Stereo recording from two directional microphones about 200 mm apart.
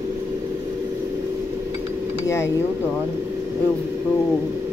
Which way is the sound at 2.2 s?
15° left (ahead or behind).